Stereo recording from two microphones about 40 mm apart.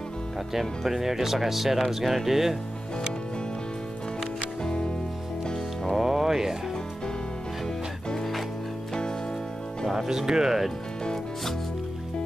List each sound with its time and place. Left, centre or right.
0.5 s speech: centre
4.6 s music: left
5.9 s music: centre
9.9 s speech: centre